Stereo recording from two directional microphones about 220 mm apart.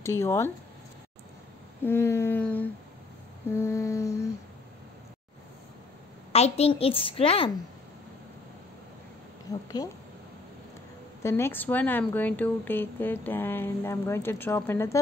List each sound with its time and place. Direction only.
0.0 s speech: 10° left (ahead or behind)
1.8 s speech: 10° left (ahead or behind)
6.3 s a woman's voice: 30° left (ahead or behind)
9.5 s speech: 15° left (ahead or behind)
11.2 s speech: 10° left (ahead or behind)